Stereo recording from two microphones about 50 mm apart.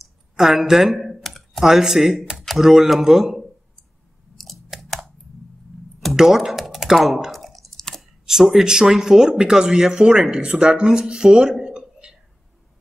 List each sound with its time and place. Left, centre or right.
0.4 s speech: centre
1.2 s computer keyboard: centre
1.6 s speech: centre
4.8 s a sound: centre
6.1 s typing: centre
7.0 s a sound: centre
8.3 s speech: centre